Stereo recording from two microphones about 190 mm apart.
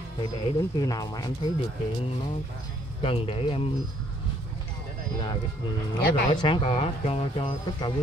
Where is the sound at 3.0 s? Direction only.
30° left (ahead or behind).